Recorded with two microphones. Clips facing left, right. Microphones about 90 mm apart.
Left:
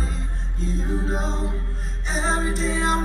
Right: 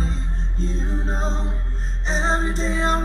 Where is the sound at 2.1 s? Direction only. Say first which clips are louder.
Right 1 dB; 30° right (ahead or behind).